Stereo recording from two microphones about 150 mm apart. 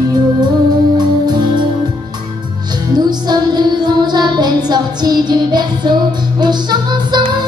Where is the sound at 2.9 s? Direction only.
25° right (ahead or behind).